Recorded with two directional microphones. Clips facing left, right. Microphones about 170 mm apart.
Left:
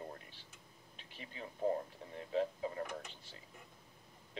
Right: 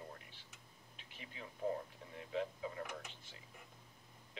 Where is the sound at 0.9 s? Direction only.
35° left (ahead or behind).